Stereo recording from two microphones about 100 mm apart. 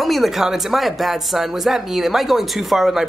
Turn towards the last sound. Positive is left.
turn(degrees=0)  # may be behind; listen again after turning